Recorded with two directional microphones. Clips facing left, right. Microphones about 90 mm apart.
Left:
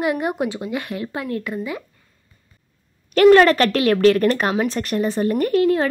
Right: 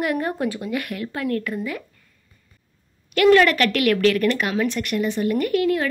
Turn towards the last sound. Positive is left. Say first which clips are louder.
# left 3 dB
turn(degrees=30)  # may be behind; listen again after turning